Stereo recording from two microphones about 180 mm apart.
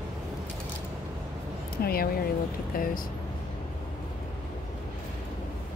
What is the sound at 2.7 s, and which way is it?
Speech, 50° left (ahead or behind).